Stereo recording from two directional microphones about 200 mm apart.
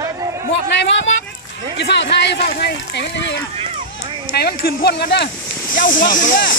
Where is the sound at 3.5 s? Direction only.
30° right (ahead or behind).